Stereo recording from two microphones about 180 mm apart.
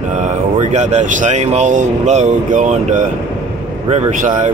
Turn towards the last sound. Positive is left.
turn(degrees=-45)  # may be behind; listen again after turning